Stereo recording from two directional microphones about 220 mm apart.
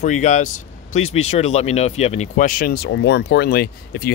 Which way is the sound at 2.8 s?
50° left (ahead or behind).